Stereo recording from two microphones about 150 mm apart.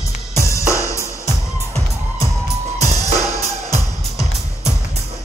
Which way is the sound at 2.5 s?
45° right (ahead or behind).